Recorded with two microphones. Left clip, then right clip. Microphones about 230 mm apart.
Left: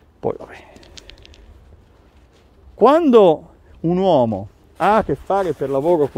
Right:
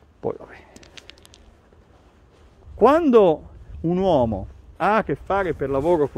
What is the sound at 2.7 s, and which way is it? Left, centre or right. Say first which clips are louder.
Speech: left 3 dB; centre.